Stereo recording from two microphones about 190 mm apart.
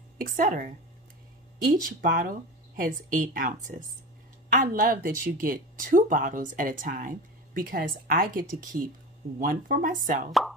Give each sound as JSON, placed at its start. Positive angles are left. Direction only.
{"t": 0.2, "sound": "speech", "side_deg": -45}